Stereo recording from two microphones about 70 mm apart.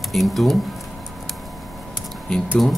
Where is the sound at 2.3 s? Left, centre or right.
Centre.